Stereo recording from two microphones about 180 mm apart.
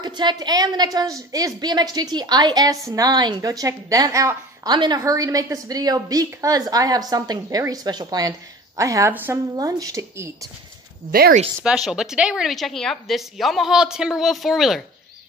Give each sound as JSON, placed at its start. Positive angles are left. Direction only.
{"t": 0.0, "sound": "a woman's voice", "side_deg": -25}
{"t": 11.1, "sound": "speech", "side_deg": -55}
{"t": 11.6, "sound": "a woman's voice", "side_deg": -5}